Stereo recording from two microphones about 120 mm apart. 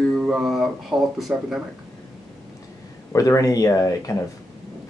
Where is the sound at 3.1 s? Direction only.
25° left (ahead or behind).